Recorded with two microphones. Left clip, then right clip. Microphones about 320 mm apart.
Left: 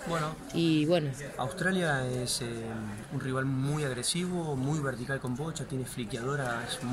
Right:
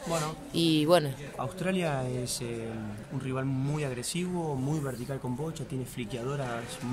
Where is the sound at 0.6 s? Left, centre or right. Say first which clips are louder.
Right 1 dB; right.